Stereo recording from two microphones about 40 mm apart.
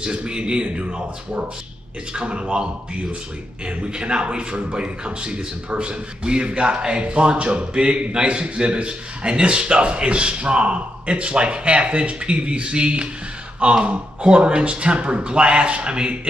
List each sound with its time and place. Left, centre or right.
0.0 s a man's voice: right